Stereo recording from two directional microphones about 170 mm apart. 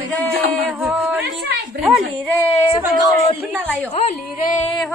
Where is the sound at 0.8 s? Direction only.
5° right (ahead or behind).